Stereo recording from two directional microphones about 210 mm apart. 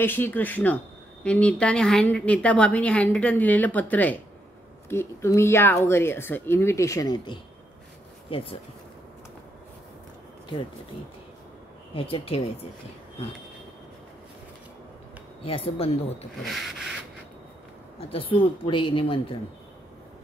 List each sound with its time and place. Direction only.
0.0 s a woman's voice: 10° left (ahead or behind); by 8.5 s 25° left (ahead or behind)
11.9 s a woman's voice: 25° left (ahead or behind)
15.4 s a woman's voice: 25° left (ahead or behind)
17.9 s a woman's voice: 25° left (ahead or behind)